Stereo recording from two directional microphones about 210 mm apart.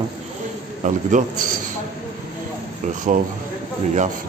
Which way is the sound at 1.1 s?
35° right (ahead or behind).